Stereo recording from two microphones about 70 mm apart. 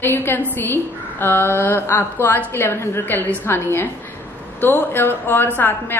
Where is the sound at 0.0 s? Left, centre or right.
Left.